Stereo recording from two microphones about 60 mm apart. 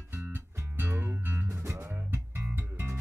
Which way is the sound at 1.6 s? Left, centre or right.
Right.